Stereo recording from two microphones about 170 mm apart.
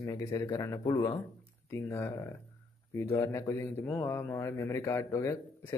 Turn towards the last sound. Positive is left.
turn(degrees=15)  # may be behind; listen again after turning